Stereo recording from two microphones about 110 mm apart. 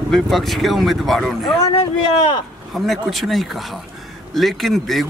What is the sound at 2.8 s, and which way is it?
Speech, centre (ahead or behind).